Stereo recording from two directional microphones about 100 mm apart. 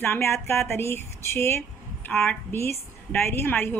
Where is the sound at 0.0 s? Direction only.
20° left (ahead or behind).